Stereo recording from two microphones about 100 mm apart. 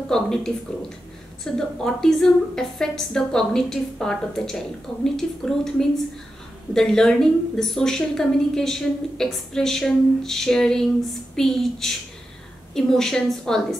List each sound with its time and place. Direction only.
0.1 s a woman's voice: 5° left (ahead or behind)